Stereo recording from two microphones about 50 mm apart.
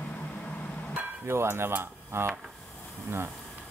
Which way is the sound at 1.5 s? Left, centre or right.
Right.